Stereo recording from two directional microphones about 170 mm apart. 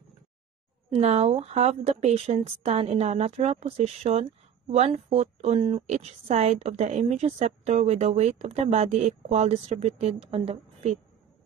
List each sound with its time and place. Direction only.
0.8 s speech: 40° right (ahead or behind)